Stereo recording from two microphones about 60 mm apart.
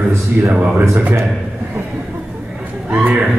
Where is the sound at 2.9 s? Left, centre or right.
Right.